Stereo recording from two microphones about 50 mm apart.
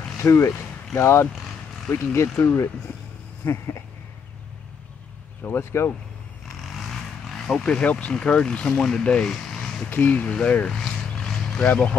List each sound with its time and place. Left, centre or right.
0.2 s speech: left
3.4 s speech: left
5.6 s speech: left
6.4 s vehicle: centre
7.6 s speech: left
9.3 s vehicle: centre
9.8 s speech: left
10.6 s a sound: centre
11.6 s speech: left